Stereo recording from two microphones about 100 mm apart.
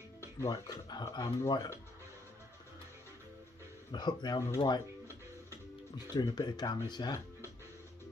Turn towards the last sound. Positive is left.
turn(degrees=45)  # may be behind; listen again after turning